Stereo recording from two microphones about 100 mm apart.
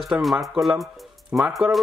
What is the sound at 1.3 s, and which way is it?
Speech, 15° right (ahead or behind).